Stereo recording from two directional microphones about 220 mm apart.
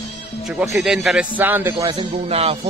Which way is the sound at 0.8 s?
Centre (ahead or behind).